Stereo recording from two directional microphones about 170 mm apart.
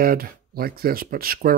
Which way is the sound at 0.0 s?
60° right (ahead or behind).